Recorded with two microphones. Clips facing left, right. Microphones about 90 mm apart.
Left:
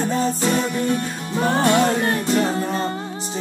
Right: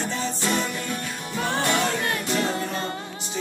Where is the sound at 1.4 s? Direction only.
35° left (ahead or behind).